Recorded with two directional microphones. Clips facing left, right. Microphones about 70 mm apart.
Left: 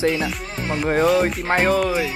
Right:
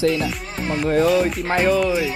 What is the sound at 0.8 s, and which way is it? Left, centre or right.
Speech, left.